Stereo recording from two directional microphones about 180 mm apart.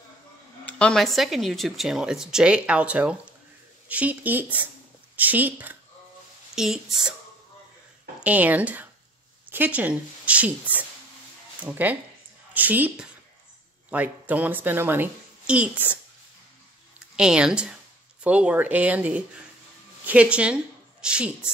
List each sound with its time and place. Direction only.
0.7 s a woman's voice: 5° left (ahead or behind)
8.2 s a woman's voice: 10° right (ahead or behind)
17.1 s a woman's voice: 5° right (ahead or behind)